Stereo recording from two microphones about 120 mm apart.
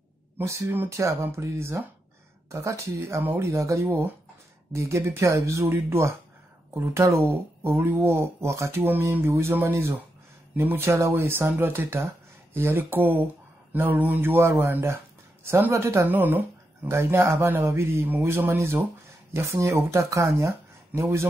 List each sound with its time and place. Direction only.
0.4 s speech: 25° right (ahead or behind)